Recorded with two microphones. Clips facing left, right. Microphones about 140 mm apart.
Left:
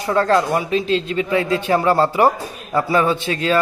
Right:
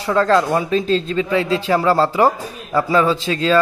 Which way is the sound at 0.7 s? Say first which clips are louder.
Right 1 dB; 40° right (ahead or behind).